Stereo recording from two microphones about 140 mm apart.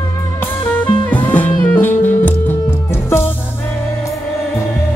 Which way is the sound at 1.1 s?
10° left (ahead or behind).